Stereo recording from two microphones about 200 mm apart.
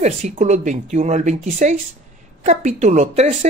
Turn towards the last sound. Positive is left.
turn(degrees=-35)  # may be behind; listen again after turning